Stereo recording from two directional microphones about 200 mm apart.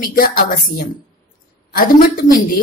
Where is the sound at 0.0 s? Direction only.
45° left (ahead or behind).